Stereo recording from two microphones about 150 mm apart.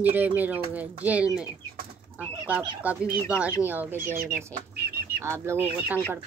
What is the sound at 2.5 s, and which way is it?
Speech, 10° right (ahead or behind).